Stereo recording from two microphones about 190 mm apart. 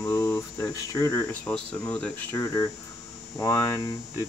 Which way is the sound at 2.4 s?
15° left (ahead or behind).